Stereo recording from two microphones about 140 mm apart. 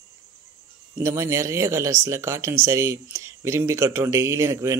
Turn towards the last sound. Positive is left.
turn(degrees=-20)  # may be behind; listen again after turning